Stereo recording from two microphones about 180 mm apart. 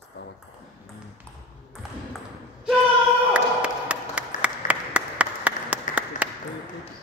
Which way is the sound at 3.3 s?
5° right (ahead or behind).